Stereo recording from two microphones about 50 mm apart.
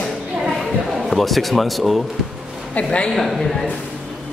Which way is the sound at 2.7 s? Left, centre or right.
Left.